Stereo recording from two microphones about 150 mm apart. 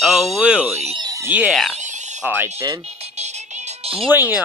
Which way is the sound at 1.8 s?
50° right (ahead or behind).